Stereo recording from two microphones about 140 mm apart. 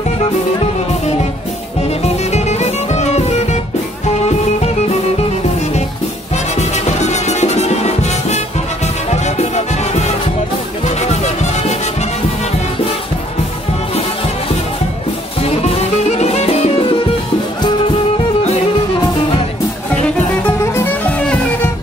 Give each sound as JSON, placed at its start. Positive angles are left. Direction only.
{"t": 1.8, "sound": "music", "side_deg": 50}
{"t": 6.3, "sound": "music", "side_deg": 55}
{"t": 16.1, "sound": "music", "side_deg": 50}
{"t": 20.4, "sound": "music", "side_deg": 15}